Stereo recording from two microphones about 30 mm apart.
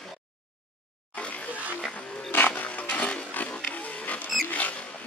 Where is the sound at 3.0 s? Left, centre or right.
Left.